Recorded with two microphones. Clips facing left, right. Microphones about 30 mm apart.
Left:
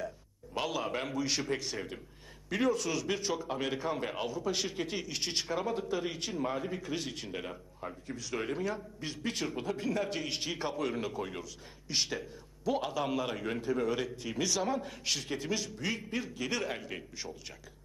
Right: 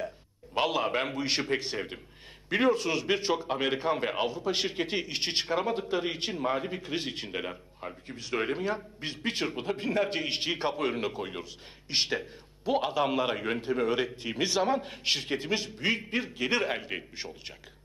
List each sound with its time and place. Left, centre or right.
0.6 s a man's voice: right